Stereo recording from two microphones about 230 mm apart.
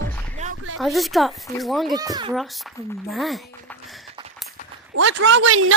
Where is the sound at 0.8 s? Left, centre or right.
Centre.